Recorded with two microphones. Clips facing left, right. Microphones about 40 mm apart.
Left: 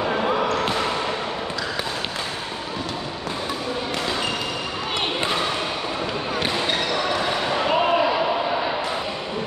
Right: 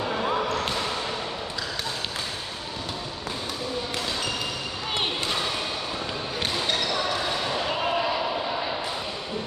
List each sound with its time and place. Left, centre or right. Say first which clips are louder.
5.2 s basketball bounce: left 5 dB; left
7.4 s basketball bounce: left 6 dB; left